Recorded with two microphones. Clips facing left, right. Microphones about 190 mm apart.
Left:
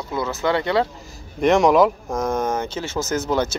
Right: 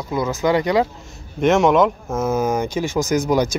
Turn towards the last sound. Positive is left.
turn(degrees=-10)  # may be behind; listen again after turning